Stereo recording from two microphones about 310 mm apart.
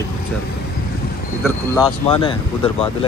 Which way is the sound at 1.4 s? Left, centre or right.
Centre.